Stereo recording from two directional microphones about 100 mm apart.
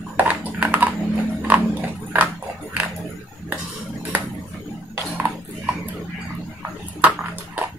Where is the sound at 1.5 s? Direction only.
15° right (ahead or behind).